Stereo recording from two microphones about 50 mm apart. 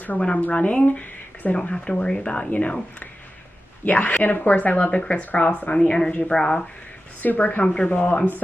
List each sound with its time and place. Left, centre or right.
0.2 s speech: left
5.8 s a woman's voice: centre
7.2 s speech: left